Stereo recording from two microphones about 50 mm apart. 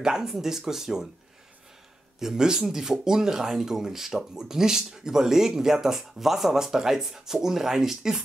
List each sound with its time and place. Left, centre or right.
0.0 s speech: centre
2.1 s speech: centre